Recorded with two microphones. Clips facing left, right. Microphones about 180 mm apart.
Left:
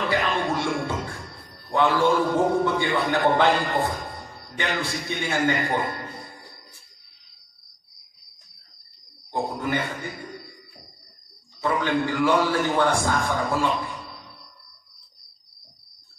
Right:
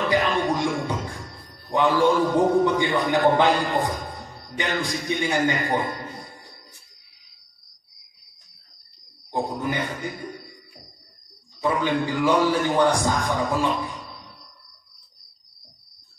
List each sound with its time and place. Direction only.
0.1 s music: 15° right (ahead or behind)
1.7 s a man's voice: 15° right (ahead or behind)
9.6 s a man's voice: 15° right (ahead or behind)
11.6 s a man's voice: 15° right (ahead or behind)